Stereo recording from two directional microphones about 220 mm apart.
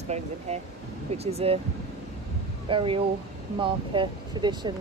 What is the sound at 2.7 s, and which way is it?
A woman's voice, 25° right (ahead or behind).